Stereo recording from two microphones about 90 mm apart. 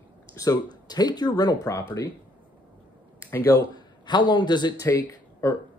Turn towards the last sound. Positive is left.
turn(degrees=35)  # may be behind; listen again after turning